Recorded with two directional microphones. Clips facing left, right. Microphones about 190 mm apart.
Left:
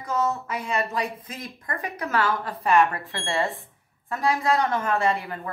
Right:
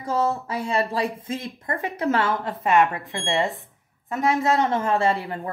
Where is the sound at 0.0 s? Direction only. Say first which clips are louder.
Right 2 dB; 30° right (ahead or behind).